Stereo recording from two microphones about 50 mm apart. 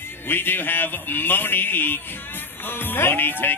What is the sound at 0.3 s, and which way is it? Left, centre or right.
Speech, left.